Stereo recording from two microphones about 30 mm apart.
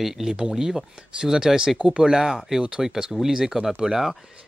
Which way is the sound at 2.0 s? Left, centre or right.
Centre.